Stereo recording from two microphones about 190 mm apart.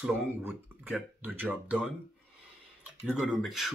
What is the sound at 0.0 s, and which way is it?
Speech, 10° right (ahead or behind).